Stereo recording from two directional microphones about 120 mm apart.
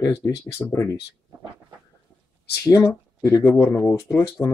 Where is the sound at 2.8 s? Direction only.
15° left (ahead or behind).